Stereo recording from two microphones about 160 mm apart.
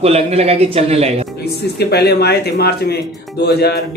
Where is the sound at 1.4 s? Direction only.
90° left.